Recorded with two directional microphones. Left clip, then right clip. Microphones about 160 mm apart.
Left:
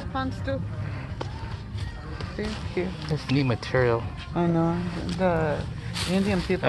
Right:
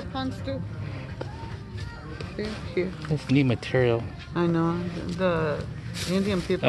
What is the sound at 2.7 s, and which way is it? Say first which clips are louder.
Speech: right 3 dB; 45° right (ahead or behind).